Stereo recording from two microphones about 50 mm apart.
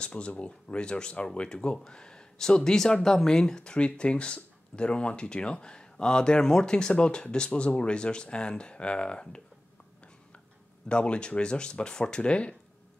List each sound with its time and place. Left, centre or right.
0.0 s speech: left
10.9 s speech: left